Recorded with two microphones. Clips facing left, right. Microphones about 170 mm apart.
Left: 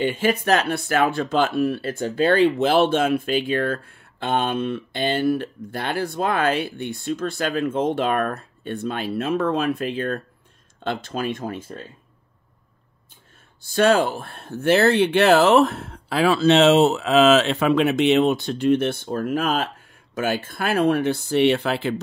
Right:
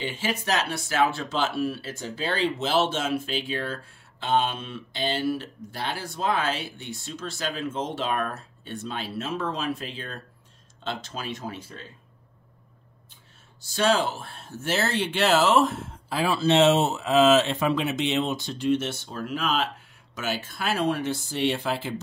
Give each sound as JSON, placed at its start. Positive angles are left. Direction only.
{"t": 0.0, "sound": "speech", "side_deg": 55}
{"t": 13.6, "sound": "speech", "side_deg": 55}